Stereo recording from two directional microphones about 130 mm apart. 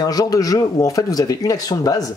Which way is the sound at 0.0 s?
30° left (ahead or behind).